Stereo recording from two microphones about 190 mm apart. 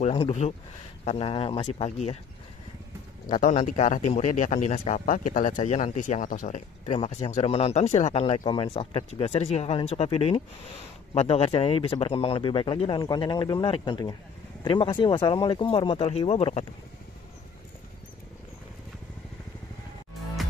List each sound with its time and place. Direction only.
0.0 s a man's voice: 30° left (ahead or behind)
3.3 s a man's voice: 40° left (ahead or behind)